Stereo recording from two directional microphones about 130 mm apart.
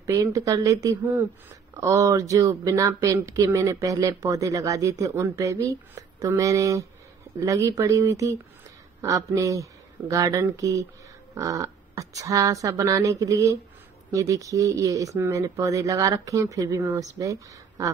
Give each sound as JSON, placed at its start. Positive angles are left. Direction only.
{"t": 0.0, "sound": "speech", "side_deg": -25}